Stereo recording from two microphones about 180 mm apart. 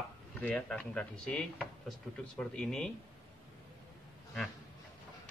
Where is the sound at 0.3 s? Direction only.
5° left (ahead or behind).